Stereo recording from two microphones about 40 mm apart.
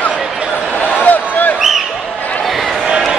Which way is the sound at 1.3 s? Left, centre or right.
Left.